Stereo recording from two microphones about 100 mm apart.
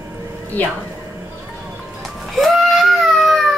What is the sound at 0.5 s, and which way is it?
Speech, 15° left (ahead or behind).